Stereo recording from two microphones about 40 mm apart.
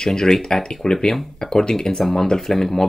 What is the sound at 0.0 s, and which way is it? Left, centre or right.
Speech, centre.